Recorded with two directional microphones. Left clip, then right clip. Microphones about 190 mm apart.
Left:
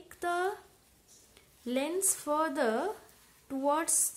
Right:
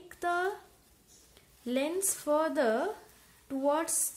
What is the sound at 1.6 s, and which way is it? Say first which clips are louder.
A woman's voice: right 1 dB; 5° left (ahead or behind).